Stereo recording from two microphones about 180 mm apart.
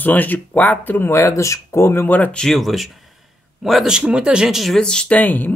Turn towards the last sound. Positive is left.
turn(degrees=10)  # may be behind; listen again after turning